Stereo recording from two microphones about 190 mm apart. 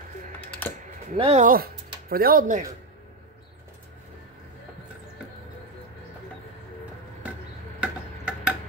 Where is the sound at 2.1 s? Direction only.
50° right (ahead or behind).